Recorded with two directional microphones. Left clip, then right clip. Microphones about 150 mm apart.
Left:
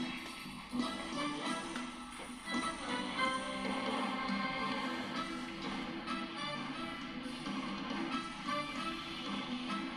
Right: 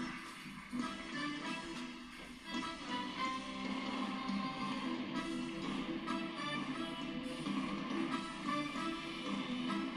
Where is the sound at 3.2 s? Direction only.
15° left (ahead or behind).